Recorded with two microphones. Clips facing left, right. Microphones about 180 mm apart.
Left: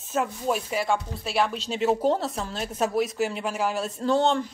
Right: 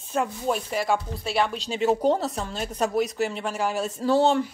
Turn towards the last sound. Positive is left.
turn(degrees=-5)  # may be behind; listen again after turning